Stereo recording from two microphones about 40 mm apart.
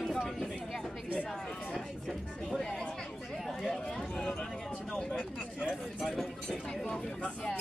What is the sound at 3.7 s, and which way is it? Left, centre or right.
Run, centre.